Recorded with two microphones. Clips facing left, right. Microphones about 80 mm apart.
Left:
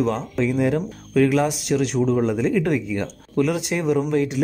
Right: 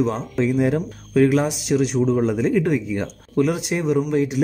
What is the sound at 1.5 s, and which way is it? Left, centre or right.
Speech, centre.